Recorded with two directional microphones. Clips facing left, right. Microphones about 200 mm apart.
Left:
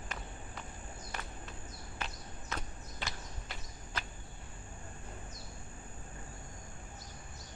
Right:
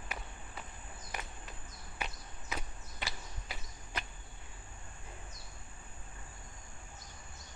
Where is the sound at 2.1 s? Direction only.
10° right (ahead or behind).